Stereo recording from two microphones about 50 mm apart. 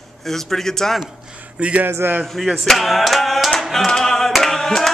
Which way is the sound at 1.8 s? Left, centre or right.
Right.